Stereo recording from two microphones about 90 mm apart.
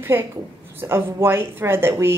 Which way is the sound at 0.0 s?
25° right (ahead or behind).